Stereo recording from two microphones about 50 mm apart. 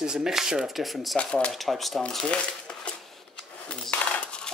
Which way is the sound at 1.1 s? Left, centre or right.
Centre.